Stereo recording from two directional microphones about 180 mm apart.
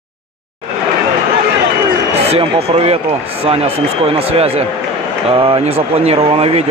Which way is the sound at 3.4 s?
35° right (ahead or behind).